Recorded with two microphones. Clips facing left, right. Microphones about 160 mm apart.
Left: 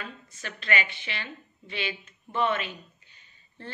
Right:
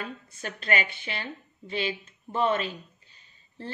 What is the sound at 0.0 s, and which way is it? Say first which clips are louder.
A woman's voice: right 4 dB; 45° right (ahead or behind).